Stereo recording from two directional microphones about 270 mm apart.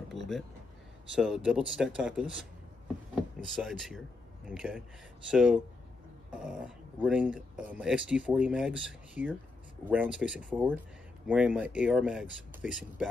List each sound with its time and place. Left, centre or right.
0.2 s speech: centre
3.4 s speech: centre